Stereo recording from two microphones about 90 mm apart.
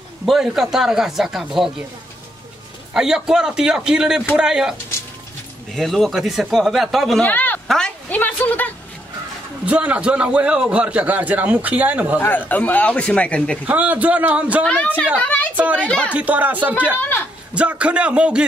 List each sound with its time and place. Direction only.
0.2 s speech: 5° right (ahead or behind)
2.9 s a man's voice: 5° right (ahead or behind)
5.8 s speech: centre (ahead or behind)
7.2 s speech: 20° left (ahead or behind)
7.6 s speech: 5° left (ahead or behind)
8.1 s a woman's voice: 20° left (ahead or behind)
9.7 s a man's voice: 15° right (ahead or behind)
12.2 s speech: 20° left (ahead or behind)
13.7 s a man's voice: 15° right (ahead or behind)
14.6 s speech: 15° left (ahead or behind)
15.2 s a sound: 15° left (ahead or behind)
15.5 s a man's voice: 15° right (ahead or behind)